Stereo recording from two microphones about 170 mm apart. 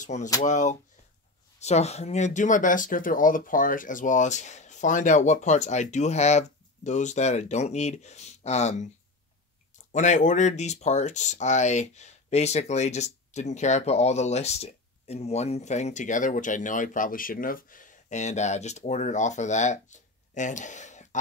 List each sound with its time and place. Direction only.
0.0 s speech: 45° left (ahead or behind)
9.9 s speech: 45° left (ahead or behind)